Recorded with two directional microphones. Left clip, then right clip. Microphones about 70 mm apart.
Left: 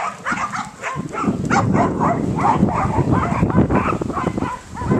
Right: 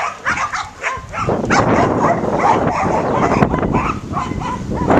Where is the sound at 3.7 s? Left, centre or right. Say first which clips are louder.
Right 1 dB; right.